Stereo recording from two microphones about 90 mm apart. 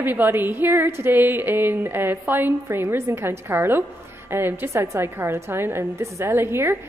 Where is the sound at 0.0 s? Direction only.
20° right (ahead or behind).